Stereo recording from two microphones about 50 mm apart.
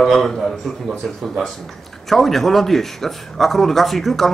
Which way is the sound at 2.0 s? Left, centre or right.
Centre.